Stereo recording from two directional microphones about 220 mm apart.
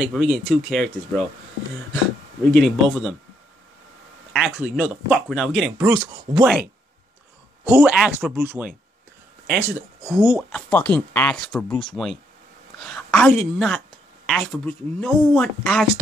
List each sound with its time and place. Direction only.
0.0 s speech: centre (ahead or behind)
2.5 s speech: centre (ahead or behind)
4.3 s speech: 5° right (ahead or behind)
5.9 s speech: 20° right (ahead or behind)
7.6 s speech: 5° right (ahead or behind)
10.7 s speech: 5° left (ahead or behind)
12.7 s a sound: 5° left (ahead or behind)
13.6 s speech: centre (ahead or behind)